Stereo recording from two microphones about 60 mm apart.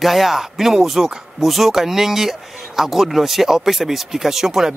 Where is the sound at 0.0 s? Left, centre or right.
Centre.